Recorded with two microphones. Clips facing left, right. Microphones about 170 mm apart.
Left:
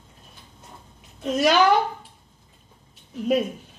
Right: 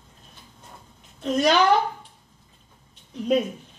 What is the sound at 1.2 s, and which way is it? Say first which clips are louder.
Speech: even; 5° left (ahead or behind).